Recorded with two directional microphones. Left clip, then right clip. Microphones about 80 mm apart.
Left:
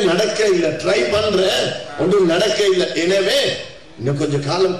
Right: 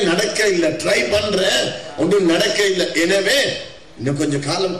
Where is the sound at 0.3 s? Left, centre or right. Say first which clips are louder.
Left 1 dB; right.